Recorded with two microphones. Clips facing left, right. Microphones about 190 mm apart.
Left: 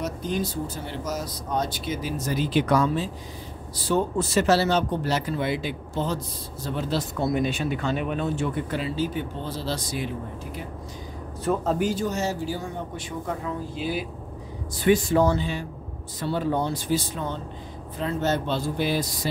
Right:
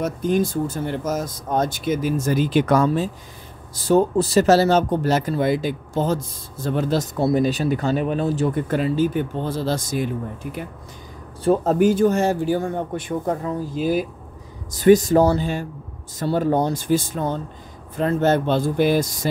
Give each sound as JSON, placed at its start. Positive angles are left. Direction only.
{"t": 0.0, "sound": "speech", "side_deg": -50}
{"t": 7.2, "sound": "speech", "side_deg": -35}
{"t": 11.6, "sound": "speech", "side_deg": -50}